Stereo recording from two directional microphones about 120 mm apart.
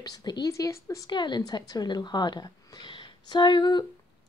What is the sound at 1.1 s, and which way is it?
Speech, 40° left (ahead or behind).